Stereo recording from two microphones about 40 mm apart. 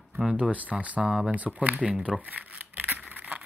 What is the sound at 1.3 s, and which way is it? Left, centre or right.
Speech, right.